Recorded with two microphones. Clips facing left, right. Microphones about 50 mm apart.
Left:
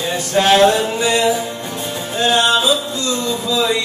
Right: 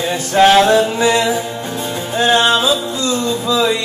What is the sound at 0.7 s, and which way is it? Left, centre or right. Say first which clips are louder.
Music: right 3 dB; right.